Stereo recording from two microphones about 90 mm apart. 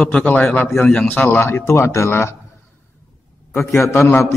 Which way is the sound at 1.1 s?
20° left (ahead or behind).